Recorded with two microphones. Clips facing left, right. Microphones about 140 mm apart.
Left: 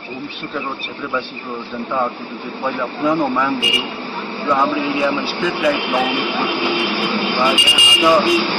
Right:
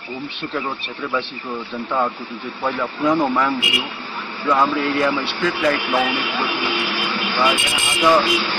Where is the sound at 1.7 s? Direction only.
Centre (ahead or behind).